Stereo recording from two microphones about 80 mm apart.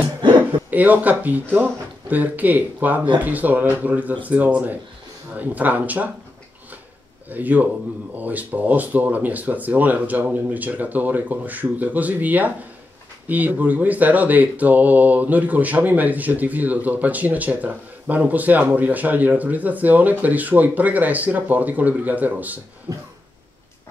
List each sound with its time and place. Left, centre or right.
0.7 s speech: right
7.2 s speech: right
22.9 s a sound: right